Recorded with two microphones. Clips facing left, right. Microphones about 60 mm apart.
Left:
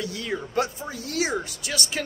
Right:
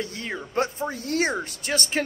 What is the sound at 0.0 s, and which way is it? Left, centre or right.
Speech, right.